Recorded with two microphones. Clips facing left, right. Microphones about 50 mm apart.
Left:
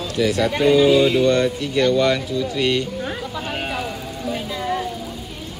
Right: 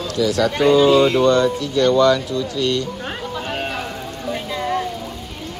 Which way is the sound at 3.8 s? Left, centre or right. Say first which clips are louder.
Even; centre.